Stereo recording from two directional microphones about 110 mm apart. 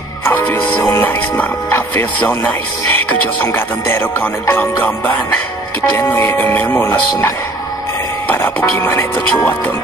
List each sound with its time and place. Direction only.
0.2 s speech: 15° left (ahead or behind)
3.5 s music: 20° left (ahead or behind)
5.8 s speech: 20° left (ahead or behind)
8.3 s music: 20° left (ahead or behind)